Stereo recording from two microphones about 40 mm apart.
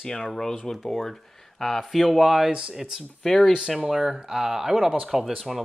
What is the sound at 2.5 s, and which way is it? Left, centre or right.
Speech, right.